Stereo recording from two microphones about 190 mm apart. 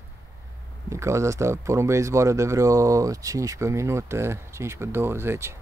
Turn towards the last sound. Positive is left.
turn(degrees=-15)  # may be behind; listen again after turning